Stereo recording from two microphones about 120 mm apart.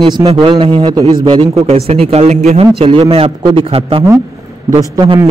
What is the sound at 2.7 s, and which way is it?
A man's voice, 50° right (ahead or behind).